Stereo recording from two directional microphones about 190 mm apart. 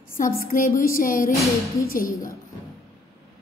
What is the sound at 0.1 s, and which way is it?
A woman's voice, 45° left (ahead or behind).